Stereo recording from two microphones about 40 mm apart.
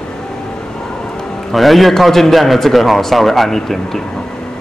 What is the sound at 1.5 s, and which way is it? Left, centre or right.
A man's voice, centre.